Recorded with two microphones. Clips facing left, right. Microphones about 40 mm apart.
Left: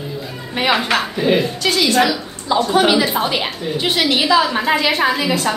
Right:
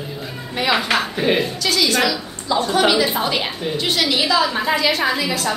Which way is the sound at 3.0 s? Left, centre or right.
Centre.